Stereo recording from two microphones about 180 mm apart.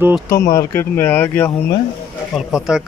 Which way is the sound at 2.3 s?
5° right (ahead or behind).